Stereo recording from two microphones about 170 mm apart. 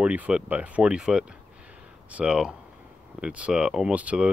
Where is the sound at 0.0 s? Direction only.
5° right (ahead or behind).